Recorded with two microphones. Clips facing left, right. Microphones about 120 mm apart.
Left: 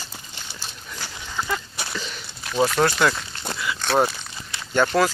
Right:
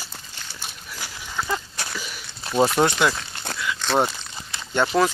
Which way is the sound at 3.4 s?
5° left (ahead or behind).